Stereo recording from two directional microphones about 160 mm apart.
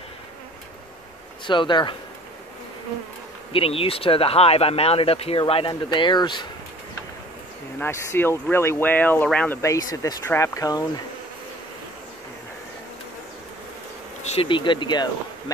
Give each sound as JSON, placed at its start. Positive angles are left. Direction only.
{"t": 1.5, "sound": "speech", "side_deg": 30}
{"t": 3.5, "sound": "speech", "side_deg": 35}
{"t": 7.8, "sound": "speech", "side_deg": 15}
{"t": 9.6, "sound": "speech", "side_deg": 20}
{"t": 14.2, "sound": "speech", "side_deg": 35}